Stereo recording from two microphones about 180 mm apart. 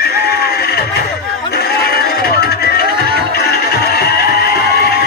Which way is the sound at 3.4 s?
60° left (ahead or behind).